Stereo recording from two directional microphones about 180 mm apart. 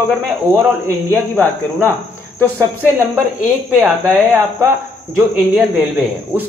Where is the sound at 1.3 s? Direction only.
10° left (ahead or behind).